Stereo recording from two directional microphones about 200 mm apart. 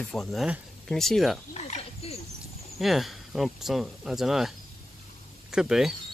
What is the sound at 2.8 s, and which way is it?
Speech, centre (ahead or behind).